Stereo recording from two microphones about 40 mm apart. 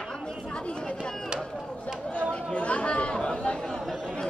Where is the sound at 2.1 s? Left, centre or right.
Left.